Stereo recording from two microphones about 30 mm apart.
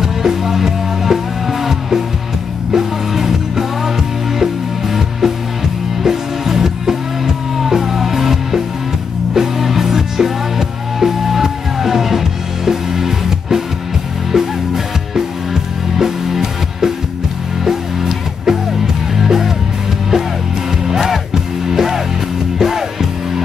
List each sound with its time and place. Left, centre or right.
0.0 s music: centre
16.0 s music: centre
20.9 s music: centre